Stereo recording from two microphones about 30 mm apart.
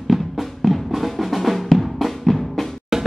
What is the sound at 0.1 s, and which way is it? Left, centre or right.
Drum, centre.